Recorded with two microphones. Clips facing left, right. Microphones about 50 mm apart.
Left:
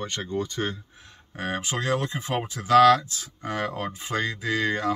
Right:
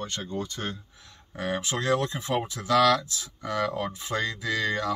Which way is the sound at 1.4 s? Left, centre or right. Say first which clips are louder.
Even; left.